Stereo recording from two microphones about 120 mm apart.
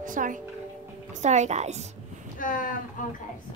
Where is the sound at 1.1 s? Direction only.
75° right (ahead or behind).